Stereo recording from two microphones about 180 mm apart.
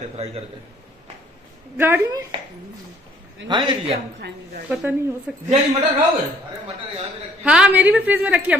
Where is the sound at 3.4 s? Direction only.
25° right (ahead or behind).